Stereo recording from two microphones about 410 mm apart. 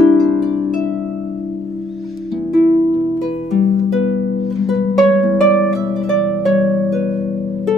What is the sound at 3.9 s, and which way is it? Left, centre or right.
Music, left.